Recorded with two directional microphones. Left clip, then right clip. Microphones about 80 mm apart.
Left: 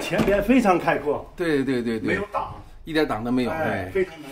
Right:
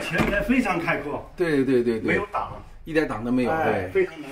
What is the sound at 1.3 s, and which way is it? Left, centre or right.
Speech, centre.